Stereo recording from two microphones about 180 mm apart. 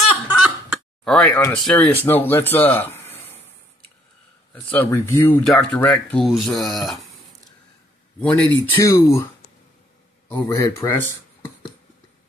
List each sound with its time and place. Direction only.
1.0 s speech: 5° left (ahead or behind)
4.6 s speech: 10° left (ahead or behind)
8.2 s speech: 5° left (ahead or behind)
10.2 s speech: 15° left (ahead or behind)